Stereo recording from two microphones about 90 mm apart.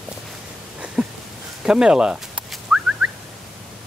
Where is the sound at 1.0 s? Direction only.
10° right (ahead or behind).